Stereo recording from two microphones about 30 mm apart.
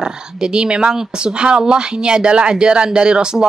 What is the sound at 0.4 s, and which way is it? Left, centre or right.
Speech, right.